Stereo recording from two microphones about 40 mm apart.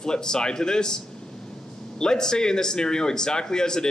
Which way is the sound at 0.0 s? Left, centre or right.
Centre.